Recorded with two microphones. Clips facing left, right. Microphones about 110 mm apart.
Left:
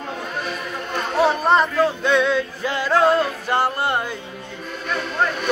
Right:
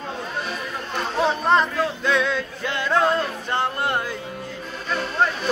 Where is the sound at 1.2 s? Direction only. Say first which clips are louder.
Left 2 dB; 5° left (ahead or behind).